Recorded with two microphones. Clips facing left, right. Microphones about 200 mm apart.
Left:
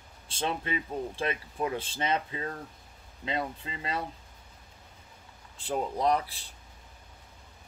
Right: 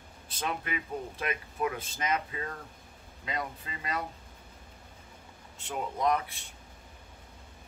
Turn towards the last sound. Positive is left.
turn(degrees=35)  # may be behind; listen again after turning